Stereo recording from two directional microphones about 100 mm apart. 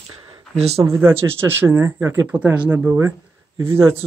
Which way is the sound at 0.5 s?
90° right.